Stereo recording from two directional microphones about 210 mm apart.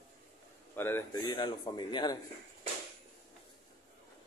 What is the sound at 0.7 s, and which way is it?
A man's voice, 10° left (ahead or behind).